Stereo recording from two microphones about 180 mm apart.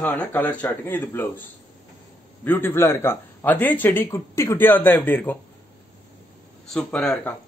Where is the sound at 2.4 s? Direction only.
10° left (ahead or behind).